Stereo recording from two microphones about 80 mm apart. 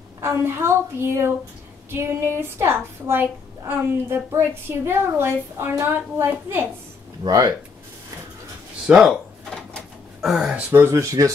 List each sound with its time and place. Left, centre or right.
0.2 s a woman's voice: right
7.2 s speech: right
9.0 s drawer open or close: centre
10.2 s speech: centre
10.7 s a woman's voice: right